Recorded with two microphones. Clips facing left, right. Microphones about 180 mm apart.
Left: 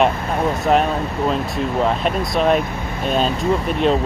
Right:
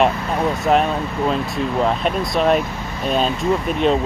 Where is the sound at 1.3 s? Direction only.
Centre (ahead or behind).